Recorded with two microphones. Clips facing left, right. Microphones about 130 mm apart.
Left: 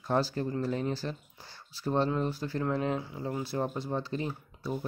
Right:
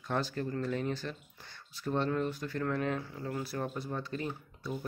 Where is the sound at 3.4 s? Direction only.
30° left (ahead or behind).